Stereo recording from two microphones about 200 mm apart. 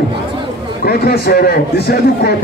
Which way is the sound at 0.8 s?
50° left (ahead or behind).